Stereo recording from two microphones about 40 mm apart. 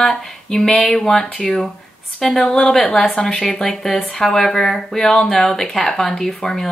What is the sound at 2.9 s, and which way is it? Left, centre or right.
Speech, left.